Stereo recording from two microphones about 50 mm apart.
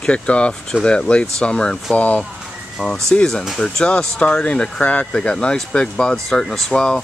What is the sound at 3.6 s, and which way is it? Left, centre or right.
Speech, centre.